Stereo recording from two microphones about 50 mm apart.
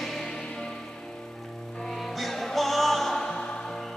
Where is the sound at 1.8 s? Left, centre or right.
Centre.